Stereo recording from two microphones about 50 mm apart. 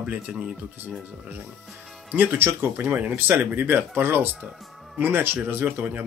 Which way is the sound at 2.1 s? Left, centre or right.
Right.